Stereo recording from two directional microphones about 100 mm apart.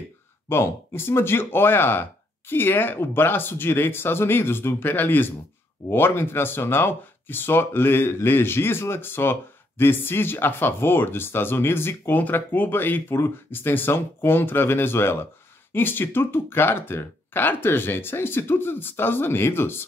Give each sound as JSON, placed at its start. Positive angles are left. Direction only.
{"t": 0.5, "sound": "speech", "side_deg": 25}